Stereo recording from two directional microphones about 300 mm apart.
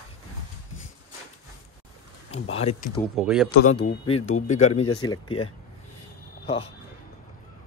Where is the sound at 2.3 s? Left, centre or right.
Left.